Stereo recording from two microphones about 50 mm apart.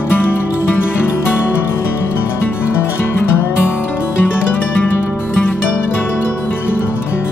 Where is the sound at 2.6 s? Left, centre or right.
Left.